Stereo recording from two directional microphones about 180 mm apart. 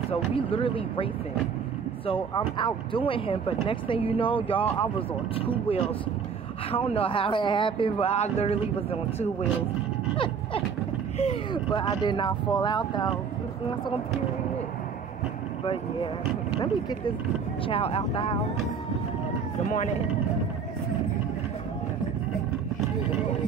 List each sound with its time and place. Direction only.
0.1 s speech: 30° left (ahead or behind)
2.0 s speech: 30° left (ahead or behind)
10.1 s a sound: 30° left (ahead or behind)
11.1 s speech: 30° left (ahead or behind)
15.6 s speech: 30° left (ahead or behind)